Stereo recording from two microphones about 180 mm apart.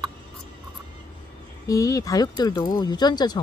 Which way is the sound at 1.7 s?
20° left (ahead or behind).